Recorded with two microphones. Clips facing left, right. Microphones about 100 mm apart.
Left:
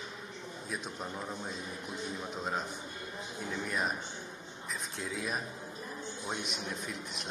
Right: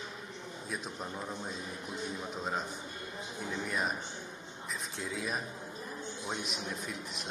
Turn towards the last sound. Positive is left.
turn(degrees=0)  # may be behind; listen again after turning